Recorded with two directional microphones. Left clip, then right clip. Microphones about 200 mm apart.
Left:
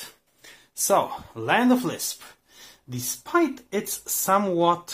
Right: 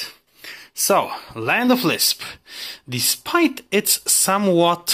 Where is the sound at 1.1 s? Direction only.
25° right (ahead or behind).